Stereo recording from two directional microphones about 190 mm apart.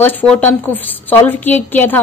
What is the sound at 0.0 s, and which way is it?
A woman's voice, 10° left (ahead or behind).